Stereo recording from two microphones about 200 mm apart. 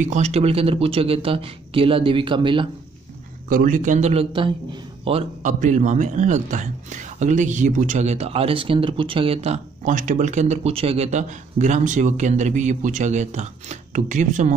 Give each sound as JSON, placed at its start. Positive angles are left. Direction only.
{"t": 0.0, "sound": "speech", "side_deg": -35}
{"t": 3.4, "sound": "a man's voice", "side_deg": -45}